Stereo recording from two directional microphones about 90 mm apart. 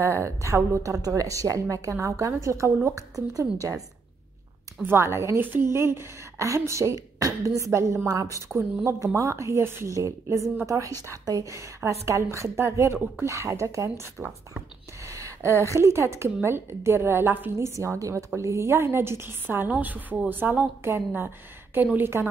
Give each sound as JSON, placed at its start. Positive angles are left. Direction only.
{"t": 0.0, "sound": "a woman's voice", "side_deg": -30}
{"t": 4.8, "sound": "a woman's voice", "side_deg": -30}